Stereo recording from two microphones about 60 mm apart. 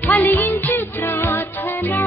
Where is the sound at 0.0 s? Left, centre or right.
Left.